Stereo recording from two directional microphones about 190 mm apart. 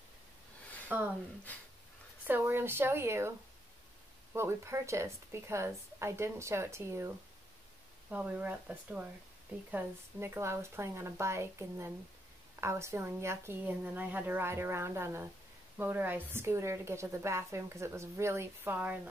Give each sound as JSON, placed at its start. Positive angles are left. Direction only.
{"t": 0.8, "sound": "speech", "side_deg": -10}
{"t": 2.2, "sound": "a woman's voice", "side_deg": -10}
{"t": 8.1, "sound": "a woman's voice", "side_deg": -10}